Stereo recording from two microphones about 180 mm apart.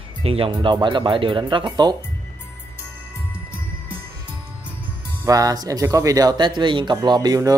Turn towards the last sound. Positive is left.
turn(degrees=-20)  # may be behind; listen again after turning